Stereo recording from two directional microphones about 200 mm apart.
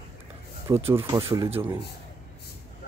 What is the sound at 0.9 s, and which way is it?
Speech, 25° right (ahead or behind).